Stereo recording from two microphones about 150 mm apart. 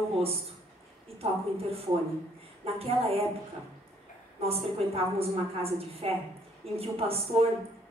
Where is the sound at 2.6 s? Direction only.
40° right (ahead or behind).